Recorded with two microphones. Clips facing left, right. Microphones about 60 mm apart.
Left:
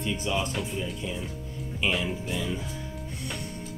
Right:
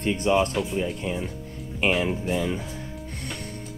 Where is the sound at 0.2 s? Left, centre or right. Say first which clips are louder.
Right 10 dB; right.